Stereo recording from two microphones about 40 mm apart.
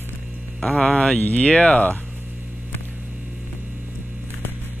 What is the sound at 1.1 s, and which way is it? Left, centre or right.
Speech, left.